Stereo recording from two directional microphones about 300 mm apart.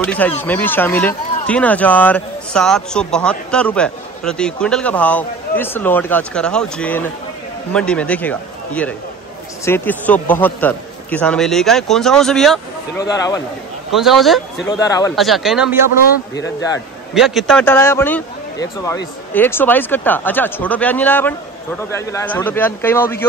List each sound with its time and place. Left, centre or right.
0.0 s speech: centre
13.0 s a man's voice: centre
13.9 s speech: centre
14.7 s a man's voice: centre
15.1 s speech: centre
15.9 s a man's voice: left
17.1 s a man's voice: centre